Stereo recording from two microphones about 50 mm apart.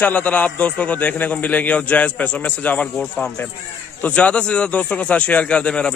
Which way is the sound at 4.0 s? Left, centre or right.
Left.